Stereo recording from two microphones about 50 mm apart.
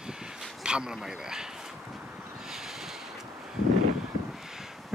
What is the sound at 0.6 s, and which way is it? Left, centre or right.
Speech, centre.